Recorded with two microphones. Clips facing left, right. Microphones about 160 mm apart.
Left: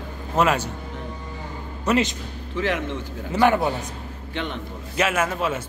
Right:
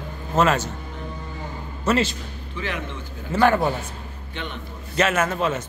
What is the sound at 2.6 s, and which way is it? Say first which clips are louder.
Speech: left 6 dB; 90° left.